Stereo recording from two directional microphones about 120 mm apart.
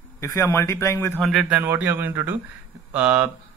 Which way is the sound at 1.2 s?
5° right (ahead or behind).